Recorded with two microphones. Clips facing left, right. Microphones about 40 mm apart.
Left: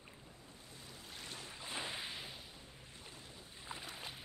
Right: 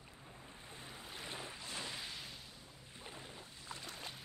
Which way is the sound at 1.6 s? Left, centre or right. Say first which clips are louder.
Left 2 dB; left.